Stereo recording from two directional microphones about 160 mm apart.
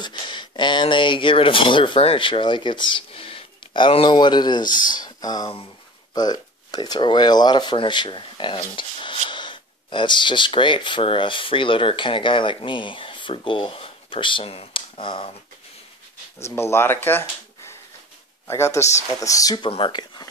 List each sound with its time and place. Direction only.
0.0 s speech: 30° left (ahead or behind)
16.3 s speech: 15° left (ahead or behind)
18.5 s speech: 15° left (ahead or behind)